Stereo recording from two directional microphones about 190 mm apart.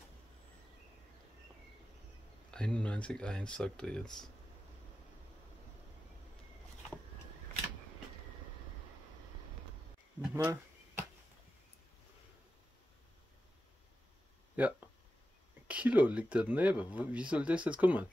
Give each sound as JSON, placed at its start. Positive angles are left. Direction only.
{"t": 2.5, "sound": "speech", "side_deg": 5}
{"t": 10.2, "sound": "insect", "side_deg": -10}
{"t": 14.6, "sound": "speech", "side_deg": -10}